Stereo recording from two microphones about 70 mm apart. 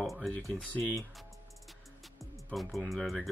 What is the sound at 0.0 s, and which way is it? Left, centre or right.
Music, centre.